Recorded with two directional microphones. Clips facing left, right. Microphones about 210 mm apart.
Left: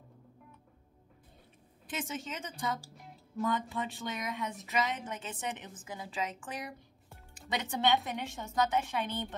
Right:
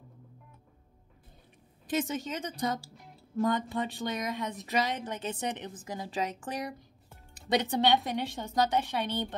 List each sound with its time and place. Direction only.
1.9 s speech: 40° right (ahead or behind)